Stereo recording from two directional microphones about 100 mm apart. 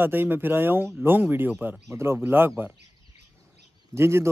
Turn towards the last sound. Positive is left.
turn(degrees=-25)  # may be behind; listen again after turning